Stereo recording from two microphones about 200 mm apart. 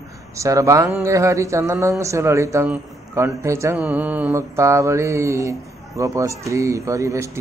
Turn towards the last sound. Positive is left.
turn(degrees=-15)  # may be behind; listen again after turning